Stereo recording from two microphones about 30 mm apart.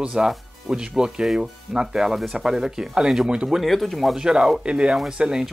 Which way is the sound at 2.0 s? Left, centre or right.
Centre.